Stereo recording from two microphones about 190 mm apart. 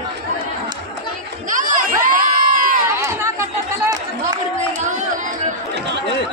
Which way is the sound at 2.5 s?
45° right (ahead or behind).